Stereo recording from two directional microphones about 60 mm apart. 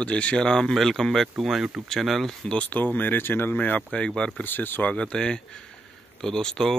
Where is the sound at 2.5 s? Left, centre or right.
Left.